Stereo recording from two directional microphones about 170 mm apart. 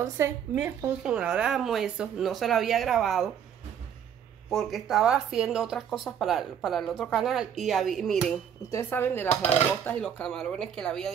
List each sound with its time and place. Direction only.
0.0 s a woman's voice: 15° right (ahead or behind)
4.5 s speech: centre (ahead or behind)
8.6 s speech: 15° left (ahead or behind)